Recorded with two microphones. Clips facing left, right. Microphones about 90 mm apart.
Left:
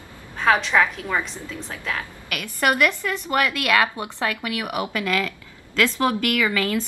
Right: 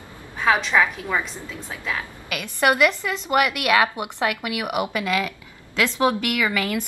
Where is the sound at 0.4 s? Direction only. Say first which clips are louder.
Left 1 dB; 5° right (ahead or behind).